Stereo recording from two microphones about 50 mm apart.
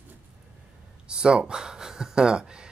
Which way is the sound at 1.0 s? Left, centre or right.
Centre.